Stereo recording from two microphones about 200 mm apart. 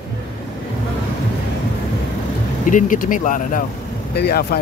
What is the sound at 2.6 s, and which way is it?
Speech, 40° left (ahead or behind).